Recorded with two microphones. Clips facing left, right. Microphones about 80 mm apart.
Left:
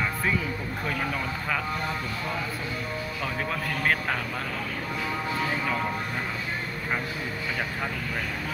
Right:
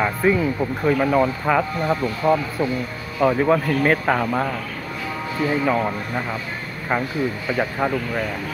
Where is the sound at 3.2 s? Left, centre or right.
Right.